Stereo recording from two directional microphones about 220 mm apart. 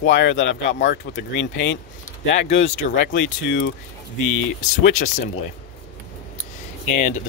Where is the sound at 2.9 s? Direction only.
55° left (ahead or behind).